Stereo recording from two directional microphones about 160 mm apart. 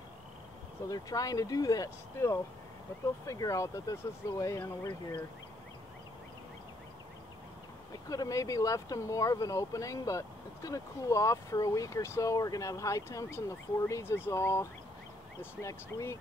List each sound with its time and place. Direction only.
0.8 s speech: 25° left (ahead or behind)
8.1 s speech: 20° left (ahead or behind)